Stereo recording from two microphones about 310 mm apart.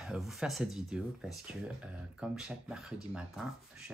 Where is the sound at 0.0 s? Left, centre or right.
Centre.